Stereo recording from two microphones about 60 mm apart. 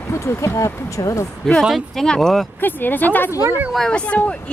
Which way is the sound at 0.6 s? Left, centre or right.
Left.